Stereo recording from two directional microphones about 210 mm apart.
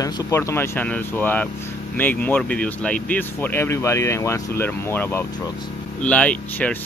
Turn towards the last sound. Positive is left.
turn(degrees=5)  # may be behind; listen again after turning